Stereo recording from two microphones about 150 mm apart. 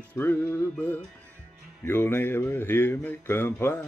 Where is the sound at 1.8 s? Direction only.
15° left (ahead or behind).